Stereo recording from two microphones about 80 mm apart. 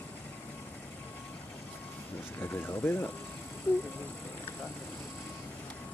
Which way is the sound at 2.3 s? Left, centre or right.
Left.